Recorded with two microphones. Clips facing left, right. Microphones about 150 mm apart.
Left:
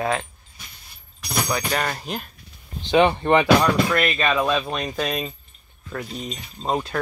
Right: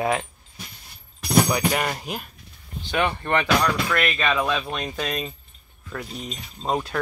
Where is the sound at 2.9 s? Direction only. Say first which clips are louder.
Left 7 dB; 20° left (ahead or behind).